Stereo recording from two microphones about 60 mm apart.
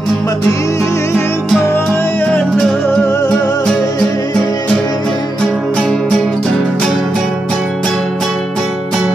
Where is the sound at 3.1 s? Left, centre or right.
Left.